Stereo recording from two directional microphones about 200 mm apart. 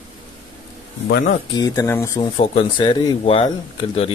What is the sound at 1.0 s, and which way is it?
Speech, 45° left (ahead or behind).